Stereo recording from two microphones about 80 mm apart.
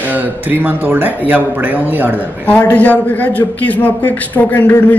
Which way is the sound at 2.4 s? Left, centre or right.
Centre.